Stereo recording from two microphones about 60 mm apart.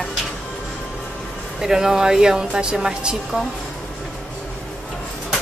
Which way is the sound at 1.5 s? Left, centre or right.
Centre.